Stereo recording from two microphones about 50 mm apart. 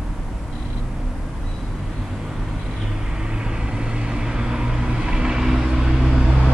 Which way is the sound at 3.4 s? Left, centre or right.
Centre.